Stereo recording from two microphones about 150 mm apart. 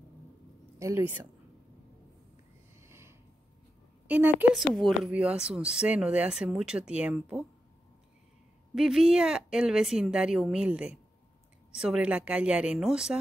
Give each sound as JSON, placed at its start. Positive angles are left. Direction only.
{"t": 0.7, "sound": "speech", "side_deg": -20}
{"t": 2.8, "sound": "a sound", "side_deg": -15}
{"t": 4.1, "sound": "speech", "side_deg": -10}
{"t": 4.6, "sound": "speech", "side_deg": 0}
{"t": 8.7, "sound": "speech", "side_deg": -5}